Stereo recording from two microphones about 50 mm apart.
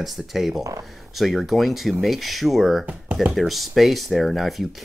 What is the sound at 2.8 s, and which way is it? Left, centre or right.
Speech, right.